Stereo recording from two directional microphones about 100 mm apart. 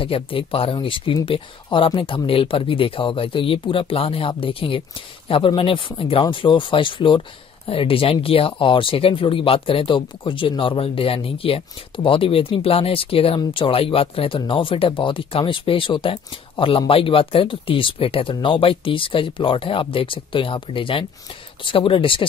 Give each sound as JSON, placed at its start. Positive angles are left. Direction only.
{"t": 0.0, "sound": "speech", "side_deg": 65}